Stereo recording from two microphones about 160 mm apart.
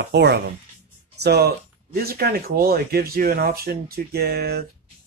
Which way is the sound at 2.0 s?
70° right (ahead or behind).